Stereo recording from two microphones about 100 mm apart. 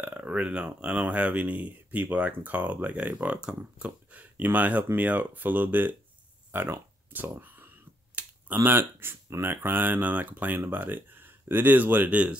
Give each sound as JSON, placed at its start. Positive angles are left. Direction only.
{"t": 0.0, "sound": "speech", "side_deg": -15}
{"t": 6.5, "sound": "a sound", "side_deg": -20}
{"t": 8.6, "sound": "speech", "side_deg": -25}